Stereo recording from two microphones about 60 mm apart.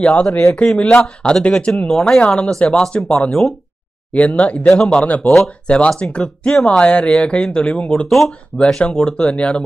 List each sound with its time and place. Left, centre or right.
0.0 s speech: left
3.3 s speech: centre
4.1 s speech: left
4.6 s speech: centre
5.0 s speech: left